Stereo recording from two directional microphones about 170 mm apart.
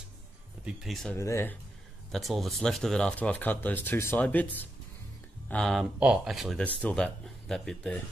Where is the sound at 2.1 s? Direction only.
Centre (ahead or behind).